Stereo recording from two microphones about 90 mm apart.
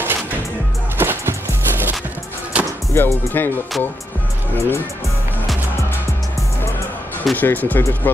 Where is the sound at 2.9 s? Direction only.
30° left (ahead or behind).